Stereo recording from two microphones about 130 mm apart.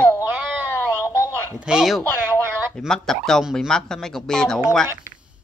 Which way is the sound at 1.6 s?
5° right (ahead or behind).